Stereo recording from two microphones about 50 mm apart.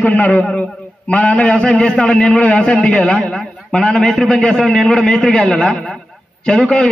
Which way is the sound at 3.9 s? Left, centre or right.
Centre.